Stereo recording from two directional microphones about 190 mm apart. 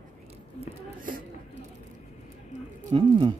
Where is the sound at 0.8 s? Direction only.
45° right (ahead or behind).